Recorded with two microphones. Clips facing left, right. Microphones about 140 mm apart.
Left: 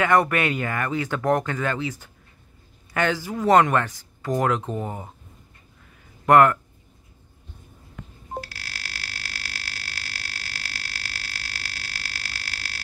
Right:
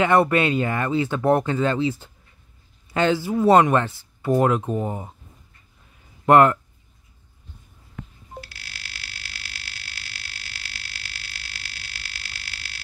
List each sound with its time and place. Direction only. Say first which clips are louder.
0.0 s speech: right 2 dB; 20° right (ahead or behind)
6.2 s speech: right 1 dB; 20° right (ahead or behind)
8.4 s burping: left 5 dB; 40° left (ahead or behind)